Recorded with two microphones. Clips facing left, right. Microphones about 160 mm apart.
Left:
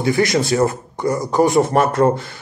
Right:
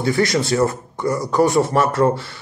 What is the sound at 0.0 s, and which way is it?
A man's voice, 20° left (ahead or behind).